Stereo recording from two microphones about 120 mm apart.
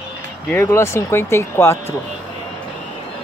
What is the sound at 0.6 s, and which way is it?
Speech, 20° left (ahead or behind).